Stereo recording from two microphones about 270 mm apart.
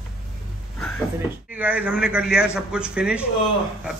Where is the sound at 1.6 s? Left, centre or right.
Centre.